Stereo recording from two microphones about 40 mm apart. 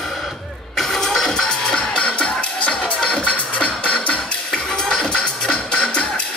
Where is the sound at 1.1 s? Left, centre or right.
Centre.